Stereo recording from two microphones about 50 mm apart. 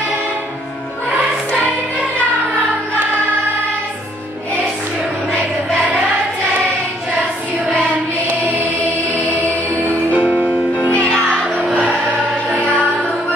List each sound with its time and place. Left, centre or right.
10.1 s music: right
11.6 s choir: right